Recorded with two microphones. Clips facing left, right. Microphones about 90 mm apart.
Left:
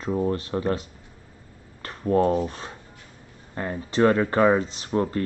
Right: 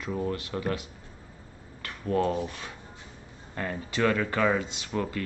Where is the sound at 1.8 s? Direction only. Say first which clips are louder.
Left 6 dB; 35° left (ahead or behind).